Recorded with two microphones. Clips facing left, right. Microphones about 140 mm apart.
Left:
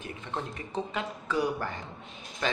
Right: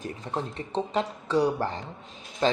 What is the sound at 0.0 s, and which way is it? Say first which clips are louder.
Speech: right 4 dB; 35° right (ahead or behind).